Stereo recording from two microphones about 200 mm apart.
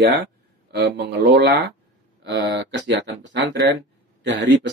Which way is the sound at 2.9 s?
65° right (ahead or behind).